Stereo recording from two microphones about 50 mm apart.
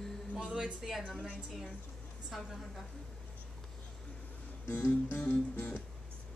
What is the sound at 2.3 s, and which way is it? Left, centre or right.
Speech, centre.